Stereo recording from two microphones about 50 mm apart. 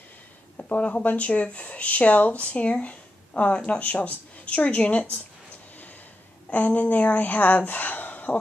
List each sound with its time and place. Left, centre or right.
0.6 s speech: left
6.5 s speech: left